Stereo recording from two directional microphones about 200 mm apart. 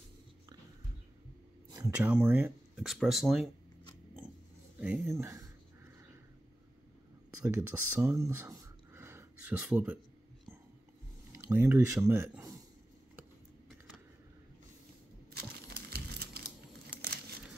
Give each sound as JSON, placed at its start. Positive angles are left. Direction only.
{"t": 2.0, "sound": "speech", "side_deg": -5}
{"t": 4.7, "sound": "speech", "side_deg": -5}
{"t": 7.4, "sound": "speech", "side_deg": -10}
{"t": 11.3, "sound": "speech", "side_deg": -10}
{"t": 15.3, "sound": "a sound", "side_deg": -55}